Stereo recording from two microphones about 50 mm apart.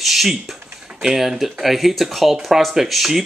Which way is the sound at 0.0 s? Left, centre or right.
Centre.